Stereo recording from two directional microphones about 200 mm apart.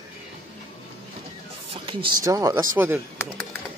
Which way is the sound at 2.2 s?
15° right (ahead or behind).